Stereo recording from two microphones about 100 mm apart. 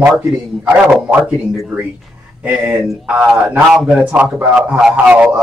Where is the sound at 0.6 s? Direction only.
10° right (ahead or behind).